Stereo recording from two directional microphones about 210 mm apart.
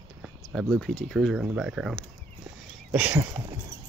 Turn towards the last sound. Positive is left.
turn(degrees=-10)  # may be behind; listen again after turning